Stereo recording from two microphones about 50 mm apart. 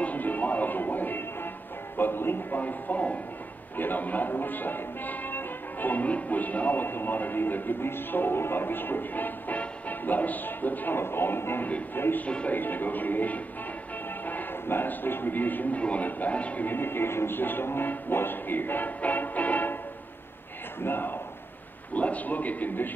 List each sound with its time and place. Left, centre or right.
0.0 s music: left
2.0 s speech: left
9.6 s music: left
11.0 s music: left
11.6 s speech: left
12.3 s speech: left
12.5 s speech: left
16.6 s music: left
20.8 s music: left
21.9 s speech: left